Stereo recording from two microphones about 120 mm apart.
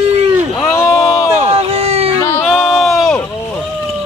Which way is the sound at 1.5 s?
60° right (ahead or behind).